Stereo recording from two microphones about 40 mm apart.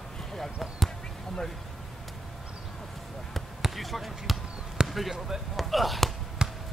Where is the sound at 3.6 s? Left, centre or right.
Centre.